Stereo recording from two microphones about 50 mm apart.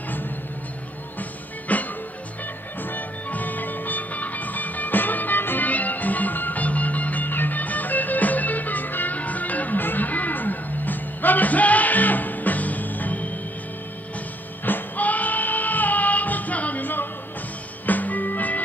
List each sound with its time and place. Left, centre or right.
1.7 s music: left
14.6 s music: left